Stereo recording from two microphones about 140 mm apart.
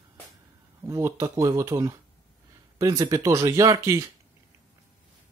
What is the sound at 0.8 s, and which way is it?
Speech, 20° right (ahead or behind).